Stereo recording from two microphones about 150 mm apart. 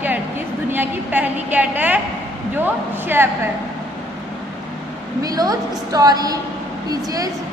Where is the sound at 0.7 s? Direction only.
15° right (ahead or behind).